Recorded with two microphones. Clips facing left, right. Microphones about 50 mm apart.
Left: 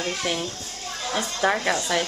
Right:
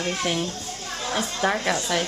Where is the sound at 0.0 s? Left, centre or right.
Centre.